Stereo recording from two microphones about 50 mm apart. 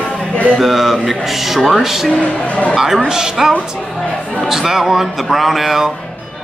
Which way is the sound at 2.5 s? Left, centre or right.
Left.